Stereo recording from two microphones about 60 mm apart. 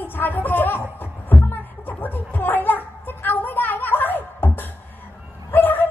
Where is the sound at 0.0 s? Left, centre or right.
Left.